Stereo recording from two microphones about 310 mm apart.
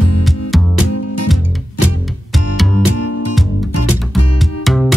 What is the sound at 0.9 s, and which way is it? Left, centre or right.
Music, left.